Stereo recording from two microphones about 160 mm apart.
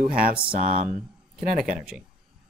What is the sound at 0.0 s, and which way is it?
Speech, 65° right (ahead or behind).